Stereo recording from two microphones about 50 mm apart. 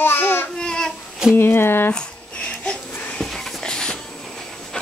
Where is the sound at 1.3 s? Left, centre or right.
Left.